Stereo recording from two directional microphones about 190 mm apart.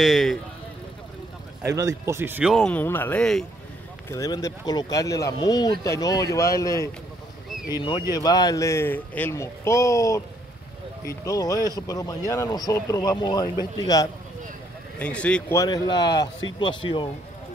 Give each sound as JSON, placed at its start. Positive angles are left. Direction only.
{"t": 0.0, "sound": "speech", "side_deg": 0}
{"t": 1.8, "sound": "speech", "side_deg": -15}
{"t": 2.5, "sound": "a man's voice", "side_deg": 5}
{"t": 4.1, "sound": "speech", "side_deg": 15}
{"t": 8.1, "sound": "a man's voice", "side_deg": 20}
{"t": 15.0, "sound": "a man's voice", "side_deg": 5}
{"t": 15.6, "sound": "speech", "side_deg": 20}